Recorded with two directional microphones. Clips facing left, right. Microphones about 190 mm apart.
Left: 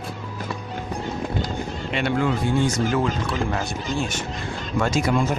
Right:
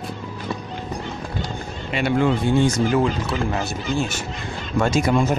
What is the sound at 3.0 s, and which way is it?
Speech, 5° right (ahead or behind).